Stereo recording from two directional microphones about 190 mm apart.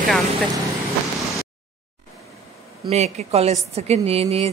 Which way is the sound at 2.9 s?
35° right (ahead or behind).